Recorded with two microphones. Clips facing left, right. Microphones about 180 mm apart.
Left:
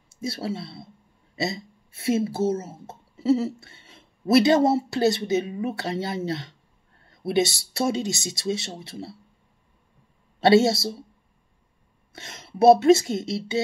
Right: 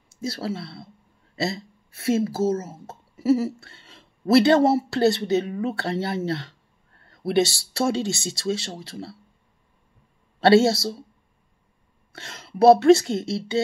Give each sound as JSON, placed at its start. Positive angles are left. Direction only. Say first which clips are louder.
{"t": 0.3, "sound": "speech", "louder": "even", "side_deg": 20}
{"t": 10.4, "sound": "speech", "louder": "right 1 dB", "side_deg": 20}
{"t": 12.1, "sound": "speech", "louder": "right 2 dB", "side_deg": 20}